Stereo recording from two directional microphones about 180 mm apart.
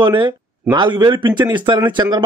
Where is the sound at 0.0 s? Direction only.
25° right (ahead or behind).